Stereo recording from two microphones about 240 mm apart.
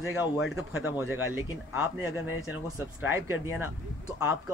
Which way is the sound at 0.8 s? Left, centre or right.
Centre.